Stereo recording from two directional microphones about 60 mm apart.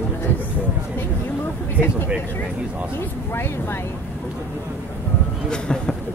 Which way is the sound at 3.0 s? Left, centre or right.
Left.